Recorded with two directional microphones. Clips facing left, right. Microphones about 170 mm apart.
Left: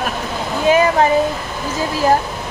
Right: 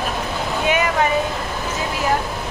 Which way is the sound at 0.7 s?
35° left (ahead or behind).